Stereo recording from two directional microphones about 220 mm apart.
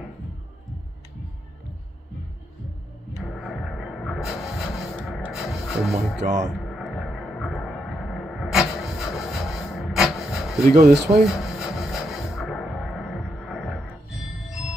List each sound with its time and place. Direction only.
3.2 s music: centre (ahead or behind)
6.2 s speech: 40° right (ahead or behind)
6.8 s music: centre (ahead or behind)
10.6 s speech: 40° right (ahead or behind)
10.9 s music: centre (ahead or behind)